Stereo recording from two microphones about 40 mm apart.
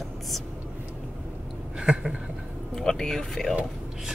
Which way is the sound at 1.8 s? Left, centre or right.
Right.